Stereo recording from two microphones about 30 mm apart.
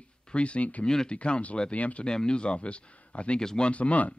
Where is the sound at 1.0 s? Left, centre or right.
Left.